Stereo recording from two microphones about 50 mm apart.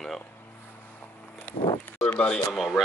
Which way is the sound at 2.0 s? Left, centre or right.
Left.